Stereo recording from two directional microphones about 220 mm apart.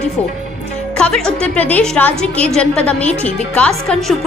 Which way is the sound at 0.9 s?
5° left (ahead or behind).